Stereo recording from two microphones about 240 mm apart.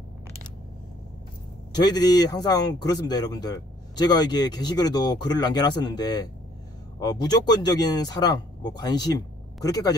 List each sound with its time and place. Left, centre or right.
1.8 s speech: centre